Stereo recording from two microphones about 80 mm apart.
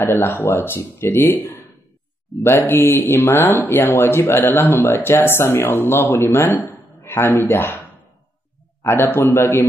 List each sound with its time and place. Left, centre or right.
0.0 s speech: left
8.8 s a man's voice: left